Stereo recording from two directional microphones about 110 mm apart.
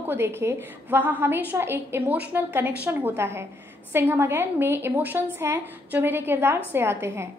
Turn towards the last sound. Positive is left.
turn(degrees=-20)  # may be behind; listen again after turning